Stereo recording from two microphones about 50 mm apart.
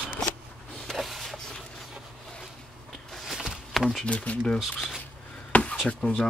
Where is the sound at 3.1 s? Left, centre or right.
Centre.